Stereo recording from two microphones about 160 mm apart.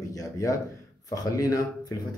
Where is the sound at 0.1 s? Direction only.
20° left (ahead or behind).